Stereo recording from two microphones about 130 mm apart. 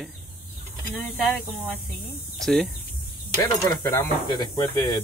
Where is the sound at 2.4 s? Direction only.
Centre (ahead or behind).